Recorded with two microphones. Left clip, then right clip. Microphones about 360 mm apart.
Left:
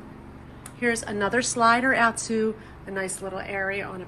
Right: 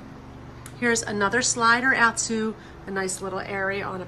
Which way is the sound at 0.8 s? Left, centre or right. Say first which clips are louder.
Right 2 dB; centre.